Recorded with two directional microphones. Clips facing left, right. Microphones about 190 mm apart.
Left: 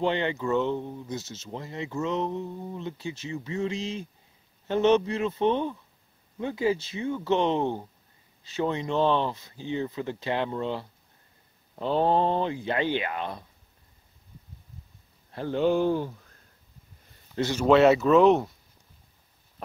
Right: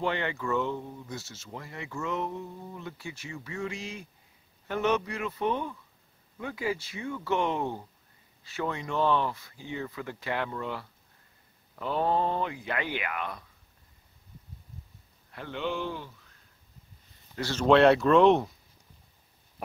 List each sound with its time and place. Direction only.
0.0 s speech: 20° left (ahead or behind)
15.3 s speech: 35° left (ahead or behind)
17.4 s speech: 15° left (ahead or behind)
17.6 s speech: 5° left (ahead or behind)